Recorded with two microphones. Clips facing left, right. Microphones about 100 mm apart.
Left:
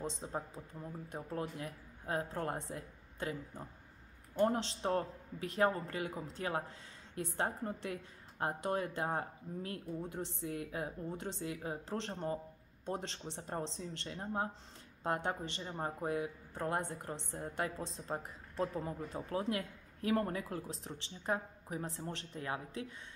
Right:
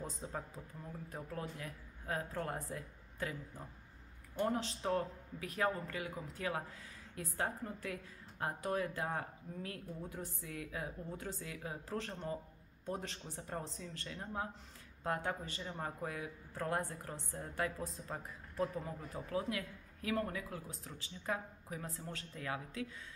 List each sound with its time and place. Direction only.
0.2 s a woman's voice: 35° left (ahead or behind)
10.5 s a woman's voice: 35° left (ahead or behind)